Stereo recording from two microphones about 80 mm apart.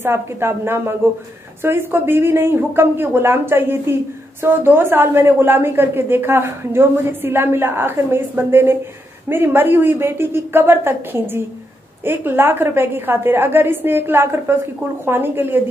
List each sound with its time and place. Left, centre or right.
0.0 s a woman's voice: right